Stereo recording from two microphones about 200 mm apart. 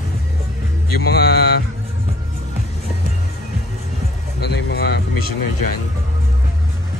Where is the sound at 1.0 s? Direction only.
55° left (ahead or behind).